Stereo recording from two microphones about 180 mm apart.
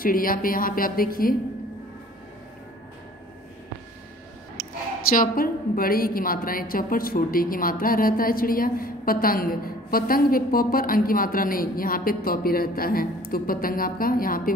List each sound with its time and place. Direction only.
0.0 s a woman's voice: 50° left (ahead or behind)
5.1 s a woman's voice: 55° left (ahead or behind)